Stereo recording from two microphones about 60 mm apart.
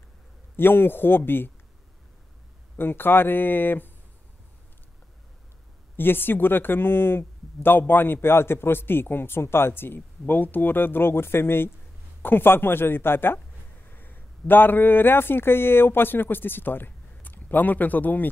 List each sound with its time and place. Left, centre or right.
0.6 s speech: left
2.8 s speech: left
5.9 s speech: left